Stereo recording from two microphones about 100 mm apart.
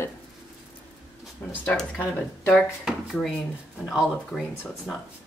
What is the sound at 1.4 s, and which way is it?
Speech, 20° left (ahead or behind).